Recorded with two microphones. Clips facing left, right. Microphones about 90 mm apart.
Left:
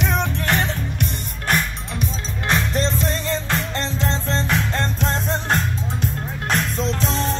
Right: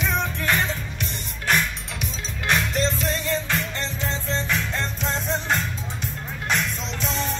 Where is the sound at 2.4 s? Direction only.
35° left (ahead or behind).